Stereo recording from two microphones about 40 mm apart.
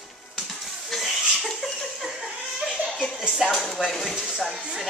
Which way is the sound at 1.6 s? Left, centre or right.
Centre.